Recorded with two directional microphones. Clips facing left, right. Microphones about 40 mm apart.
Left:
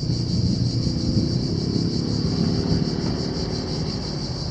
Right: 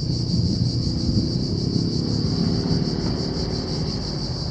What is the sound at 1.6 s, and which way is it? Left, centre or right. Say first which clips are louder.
Vehicle: even; left.